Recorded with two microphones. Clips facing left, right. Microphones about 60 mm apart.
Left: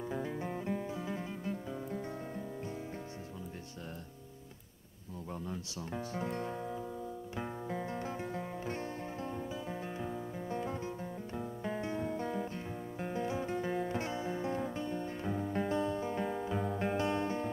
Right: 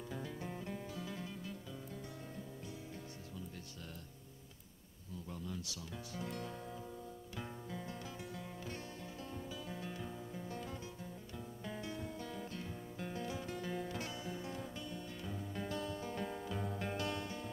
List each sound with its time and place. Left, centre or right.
0.1 s music: left
5.3 s speech: left
7.3 s music: left